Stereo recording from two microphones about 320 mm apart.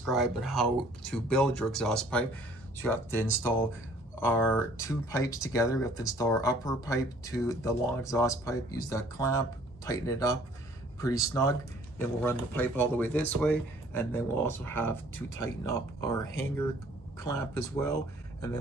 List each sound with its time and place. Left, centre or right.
0.0 s speech: centre